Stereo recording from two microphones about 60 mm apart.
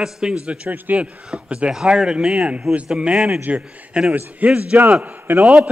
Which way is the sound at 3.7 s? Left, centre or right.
Right.